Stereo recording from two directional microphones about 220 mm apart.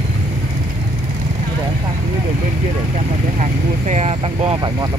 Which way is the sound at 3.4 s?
30° right (ahead or behind).